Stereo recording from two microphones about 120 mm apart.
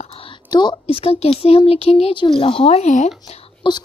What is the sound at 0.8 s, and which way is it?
A woman's voice, 55° left (ahead or behind).